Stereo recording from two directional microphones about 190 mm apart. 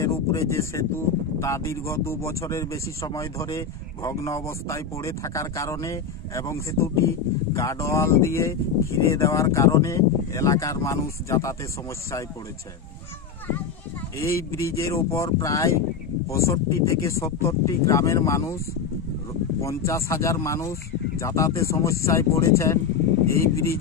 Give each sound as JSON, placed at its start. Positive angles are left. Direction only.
{"t": 0.0, "sound": "speech", "side_deg": 15}
{"t": 14.1, "sound": "speech", "side_deg": 15}
{"t": 19.6, "sound": "speech", "side_deg": 15}